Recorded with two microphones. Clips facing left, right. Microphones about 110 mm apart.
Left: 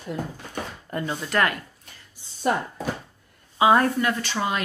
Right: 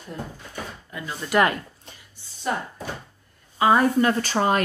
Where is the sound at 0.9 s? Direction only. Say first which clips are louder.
Left 8 dB; 55° left (ahead or behind).